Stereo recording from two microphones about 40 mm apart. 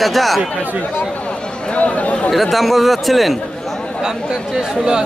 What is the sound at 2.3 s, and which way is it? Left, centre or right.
Speech, centre.